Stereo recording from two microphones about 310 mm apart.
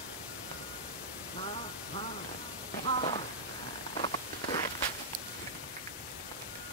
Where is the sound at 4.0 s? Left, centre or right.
Centre.